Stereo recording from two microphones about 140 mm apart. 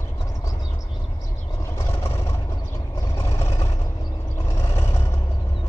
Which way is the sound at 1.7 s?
20° left (ahead or behind).